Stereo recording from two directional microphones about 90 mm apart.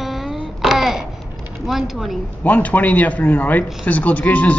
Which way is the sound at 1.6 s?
Centre (ahead or behind).